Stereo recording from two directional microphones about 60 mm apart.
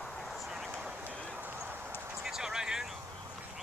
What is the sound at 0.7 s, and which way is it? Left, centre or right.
Vehicle, centre.